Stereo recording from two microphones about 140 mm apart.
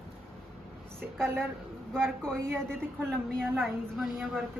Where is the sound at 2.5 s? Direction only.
5° left (ahead or behind).